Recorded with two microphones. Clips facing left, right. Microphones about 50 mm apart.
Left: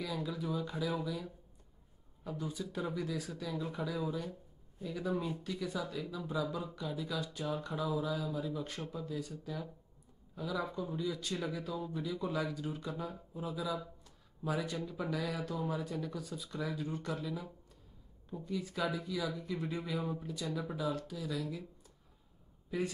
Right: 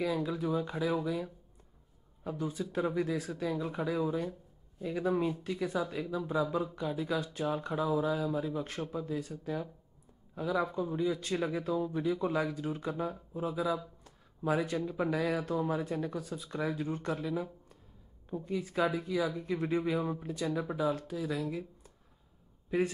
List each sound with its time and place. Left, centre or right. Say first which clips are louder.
0.0 s speech: right 6 dB; right
10.3 s speech: right 6 dB; right
10.7 s speech: right 6 dB; centre
14.0 s a sound: right 6 dB; right
14.9 s speech: right 6 dB; right